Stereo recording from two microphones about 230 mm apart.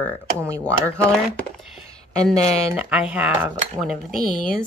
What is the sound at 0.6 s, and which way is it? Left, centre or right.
Speech, centre.